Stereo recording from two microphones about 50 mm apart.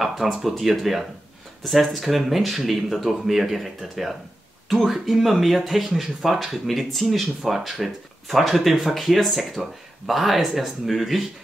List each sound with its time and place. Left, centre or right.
0.4 s speech: centre